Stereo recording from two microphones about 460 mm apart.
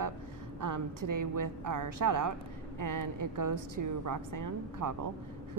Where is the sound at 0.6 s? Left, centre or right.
Right.